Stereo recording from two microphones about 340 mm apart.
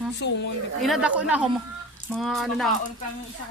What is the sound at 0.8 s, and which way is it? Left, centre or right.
Speech, centre.